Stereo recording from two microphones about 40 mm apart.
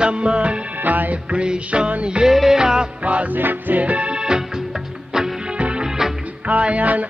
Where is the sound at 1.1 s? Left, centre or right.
Right.